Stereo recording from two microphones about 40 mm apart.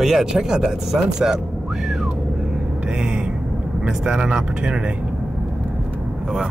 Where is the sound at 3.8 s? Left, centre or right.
Centre.